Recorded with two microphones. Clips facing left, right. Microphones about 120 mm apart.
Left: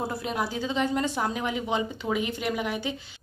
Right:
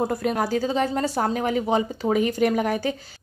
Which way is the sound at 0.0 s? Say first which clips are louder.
Right 6 dB; 50° right (ahead or behind).